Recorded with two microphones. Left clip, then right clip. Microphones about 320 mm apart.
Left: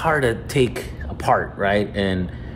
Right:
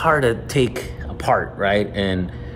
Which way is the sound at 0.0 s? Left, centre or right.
Centre.